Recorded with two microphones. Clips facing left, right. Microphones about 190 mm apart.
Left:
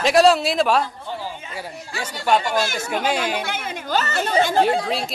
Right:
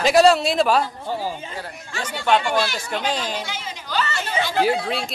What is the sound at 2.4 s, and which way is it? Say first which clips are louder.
Speech: even; 45° left (ahead or behind).